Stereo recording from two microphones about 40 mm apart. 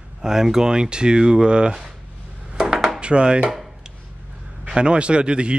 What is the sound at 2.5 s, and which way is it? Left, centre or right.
Dishes, centre.